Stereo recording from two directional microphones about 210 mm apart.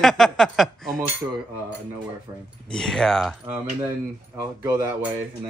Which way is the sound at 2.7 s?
5° left (ahead or behind).